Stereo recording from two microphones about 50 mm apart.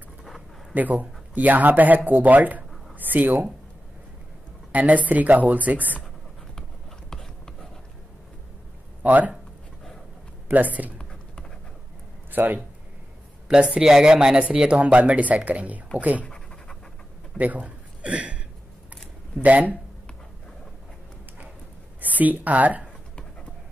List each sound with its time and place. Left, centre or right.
0.7 s speech: right
4.7 s speech: right
7.1 s a sound: centre
9.0 s speech: right
10.5 s speech: right
12.3 s speech: right
13.6 s speech: centre
17.4 s a man's voice: right
19.4 s speech: right
22.0 s speech: right